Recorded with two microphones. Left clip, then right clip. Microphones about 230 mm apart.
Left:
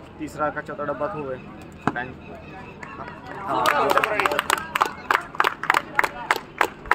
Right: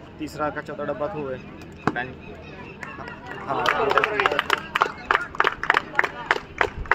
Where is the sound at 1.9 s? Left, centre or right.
Centre.